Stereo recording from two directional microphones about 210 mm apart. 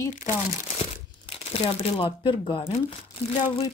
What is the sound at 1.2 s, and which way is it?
Speech, 25° left (ahead or behind).